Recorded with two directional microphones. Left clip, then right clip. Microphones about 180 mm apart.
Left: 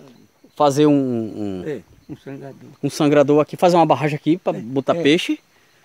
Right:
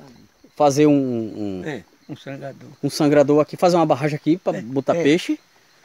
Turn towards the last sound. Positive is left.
turn(degrees=0)  # may be behind; listen again after turning